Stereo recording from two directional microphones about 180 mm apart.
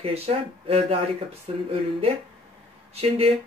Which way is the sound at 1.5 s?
35° right (ahead or behind).